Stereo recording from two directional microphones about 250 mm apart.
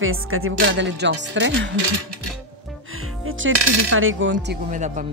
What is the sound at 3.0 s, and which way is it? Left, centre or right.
Music, right.